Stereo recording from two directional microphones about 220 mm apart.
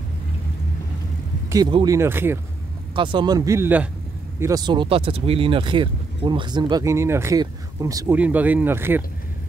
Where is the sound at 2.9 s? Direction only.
20° right (ahead or behind).